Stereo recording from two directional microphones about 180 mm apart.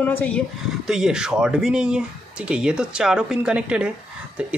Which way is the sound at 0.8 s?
5° right (ahead or behind).